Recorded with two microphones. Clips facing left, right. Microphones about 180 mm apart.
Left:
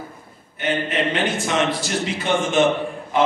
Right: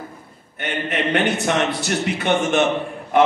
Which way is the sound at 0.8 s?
60° right (ahead or behind).